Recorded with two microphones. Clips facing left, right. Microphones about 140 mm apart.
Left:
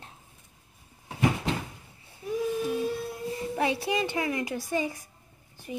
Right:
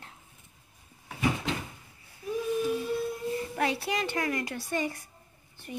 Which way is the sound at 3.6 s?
20° left (ahead or behind).